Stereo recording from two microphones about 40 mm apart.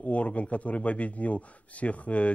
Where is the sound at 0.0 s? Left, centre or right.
Left.